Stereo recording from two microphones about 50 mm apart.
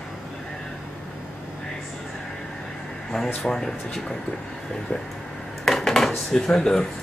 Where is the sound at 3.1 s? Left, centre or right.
Centre.